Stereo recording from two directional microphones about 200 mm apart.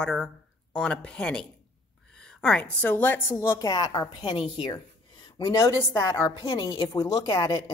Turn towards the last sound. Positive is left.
turn(degrees=20)  # may be behind; listen again after turning